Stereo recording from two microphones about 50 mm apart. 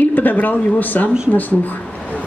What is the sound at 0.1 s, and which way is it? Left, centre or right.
Speech, left.